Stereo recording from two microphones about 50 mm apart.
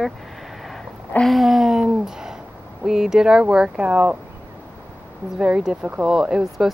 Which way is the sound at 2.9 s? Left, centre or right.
Centre.